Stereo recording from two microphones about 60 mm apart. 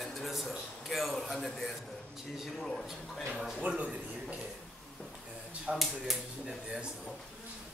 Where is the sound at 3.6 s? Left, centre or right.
Right.